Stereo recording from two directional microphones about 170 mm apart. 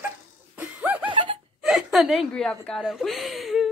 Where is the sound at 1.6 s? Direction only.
Centre (ahead or behind).